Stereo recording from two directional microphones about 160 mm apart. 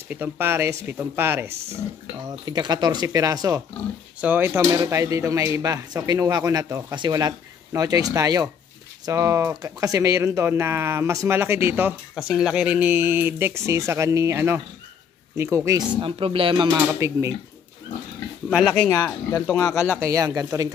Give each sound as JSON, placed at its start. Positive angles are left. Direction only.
{"t": 0.1, "sound": "speech", "side_deg": -10}
{"t": 2.2, "sound": "speech", "side_deg": -25}
{"t": 12.2, "sound": "speech", "side_deg": 0}
{"t": 16.0, "sound": "speech", "side_deg": -35}
{"t": 16.7, "sound": "speech", "side_deg": -20}
{"t": 18.7, "sound": "speech", "side_deg": 10}
{"t": 19.6, "sound": "speech", "side_deg": 20}
{"t": 20.0, "sound": "speech", "side_deg": -20}